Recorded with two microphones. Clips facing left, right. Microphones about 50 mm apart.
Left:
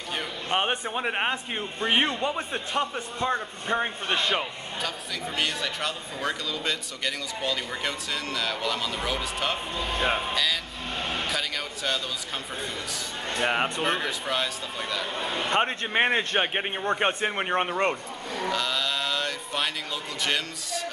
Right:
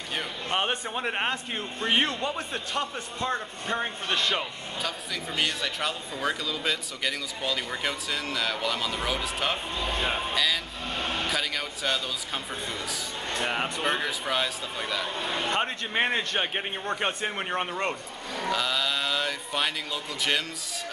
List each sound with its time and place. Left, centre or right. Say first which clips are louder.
0.5 s a man's voice: left 2 dB; centre
4.8 s speech: even; centre
13.7 s speech: left 1 dB; centre
15.5 s a man's voice: left 6 dB; left
18.3 s speech: even; centre